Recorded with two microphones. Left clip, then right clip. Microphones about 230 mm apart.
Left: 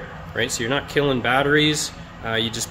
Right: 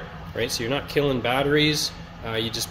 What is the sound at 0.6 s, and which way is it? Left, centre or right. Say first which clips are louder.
Speech: left 2 dB; centre.